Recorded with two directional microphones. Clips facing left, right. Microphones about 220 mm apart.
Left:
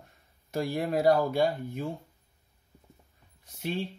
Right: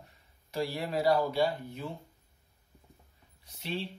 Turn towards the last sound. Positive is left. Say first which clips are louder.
# left 4 dB
turn(degrees=50)  # may be behind; listen again after turning